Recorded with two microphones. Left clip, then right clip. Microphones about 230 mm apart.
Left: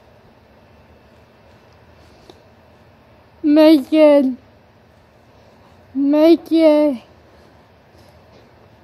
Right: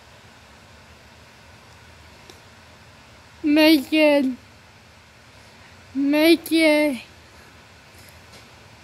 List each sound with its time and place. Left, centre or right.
3.4 s female singing: centre
6.0 s female singing: centre